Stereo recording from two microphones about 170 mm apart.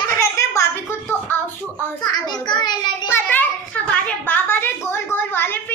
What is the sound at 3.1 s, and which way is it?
A woman's voice, 10° left (ahead or behind).